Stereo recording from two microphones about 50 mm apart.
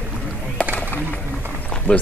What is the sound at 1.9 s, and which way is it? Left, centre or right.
Speech, left.